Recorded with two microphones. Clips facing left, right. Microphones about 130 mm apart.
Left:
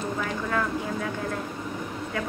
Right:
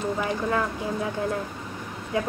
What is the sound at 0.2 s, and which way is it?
Speech, 20° right (ahead or behind).